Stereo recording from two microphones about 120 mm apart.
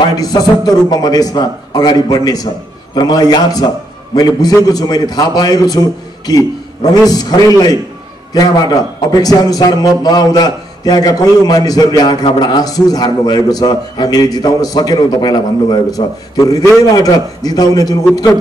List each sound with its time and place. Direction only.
0.2 s a man's voice: 30° left (ahead or behind)